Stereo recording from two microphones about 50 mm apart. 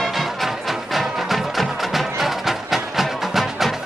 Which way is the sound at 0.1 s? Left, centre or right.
Centre.